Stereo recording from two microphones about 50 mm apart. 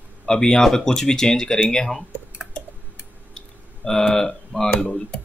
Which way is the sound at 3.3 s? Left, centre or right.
Centre.